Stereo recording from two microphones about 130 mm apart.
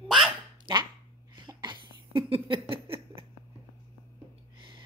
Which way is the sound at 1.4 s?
35° right (ahead or behind).